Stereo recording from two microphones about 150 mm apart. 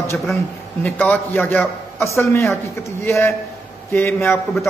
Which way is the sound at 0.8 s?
10° left (ahead or behind).